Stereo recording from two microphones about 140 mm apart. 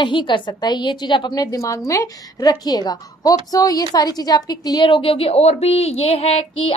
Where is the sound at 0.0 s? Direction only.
35° left (ahead or behind).